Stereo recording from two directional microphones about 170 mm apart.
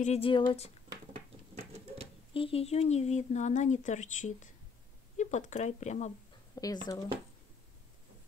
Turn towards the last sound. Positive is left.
turn(degrees=20)  # may be behind; listen again after turning